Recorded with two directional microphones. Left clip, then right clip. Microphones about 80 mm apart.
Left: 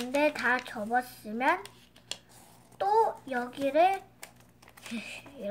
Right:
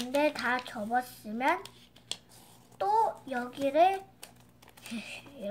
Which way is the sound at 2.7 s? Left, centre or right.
Left.